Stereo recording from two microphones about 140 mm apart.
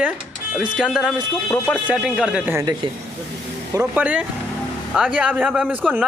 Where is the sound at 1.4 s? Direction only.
15° left (ahead or behind).